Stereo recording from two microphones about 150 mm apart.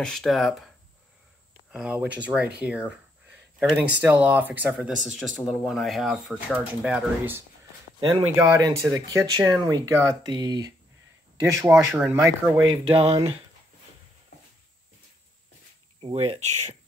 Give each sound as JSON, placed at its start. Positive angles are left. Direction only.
{"t": 0.0, "sound": "speech", "side_deg": 5}
{"t": 1.7, "sound": "speech", "side_deg": -10}
{"t": 8.4, "sound": "speech", "side_deg": -20}
{"t": 12.5, "sound": "speech", "side_deg": -35}
{"t": 16.0, "sound": "speech", "side_deg": -40}